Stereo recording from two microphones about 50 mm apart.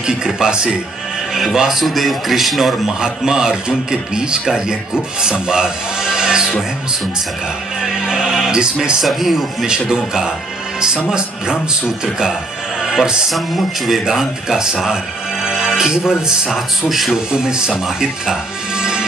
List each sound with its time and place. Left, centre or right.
0.0 s a man's voice: centre
3.0 s a man's voice: centre
7.8 s speech: centre
9.0 s a man's voice: centre
9.7 s speech: centre
12.8 s music: centre
13.3 s a man's voice: centre
17.3 s speech: centre